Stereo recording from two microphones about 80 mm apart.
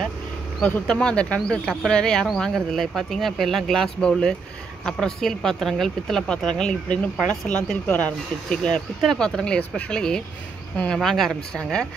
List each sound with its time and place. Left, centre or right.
0.6 s speech: centre